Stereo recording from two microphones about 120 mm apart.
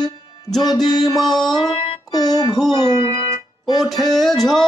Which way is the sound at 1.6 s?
35° left (ahead or behind).